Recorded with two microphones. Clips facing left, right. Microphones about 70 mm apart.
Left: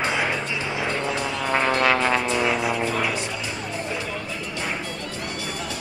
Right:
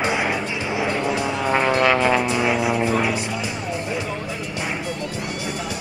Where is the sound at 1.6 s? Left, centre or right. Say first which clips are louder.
Right 2 dB; centre.